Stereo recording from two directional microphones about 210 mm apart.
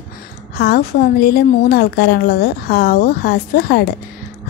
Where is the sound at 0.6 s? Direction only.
50° left (ahead or behind).